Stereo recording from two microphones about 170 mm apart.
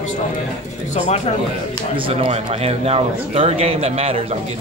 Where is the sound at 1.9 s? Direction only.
30° right (ahead or behind).